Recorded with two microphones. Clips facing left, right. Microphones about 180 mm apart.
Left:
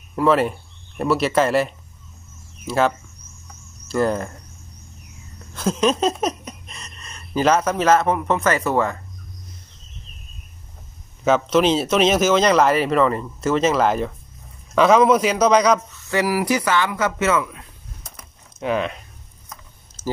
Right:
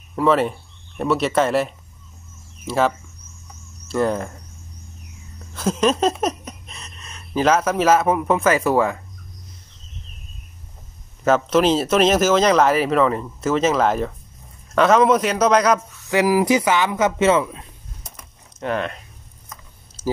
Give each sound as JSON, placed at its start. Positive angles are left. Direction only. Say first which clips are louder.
{"t": 0.1, "sound": "speech", "louder": "even", "side_deg": 0}
{"t": 5.5, "sound": "a sound", "louder": "even", "side_deg": 0}
{"t": 11.2, "sound": "speech", "louder": "even", "side_deg": -5}
{"t": 16.1, "sound": "speech", "louder": "right 3 dB", "side_deg": -15}
{"t": 18.6, "sound": "speech", "louder": "left 2 dB", "side_deg": 5}